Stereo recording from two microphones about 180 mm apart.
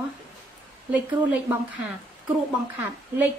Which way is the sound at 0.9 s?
10° right (ahead or behind).